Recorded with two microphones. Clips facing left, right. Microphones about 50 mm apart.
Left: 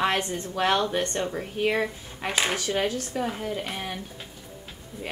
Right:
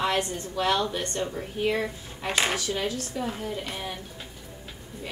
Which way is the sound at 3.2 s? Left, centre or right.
Centre.